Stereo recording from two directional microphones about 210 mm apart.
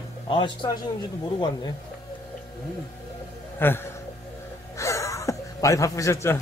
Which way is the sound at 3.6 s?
10° left (ahead or behind).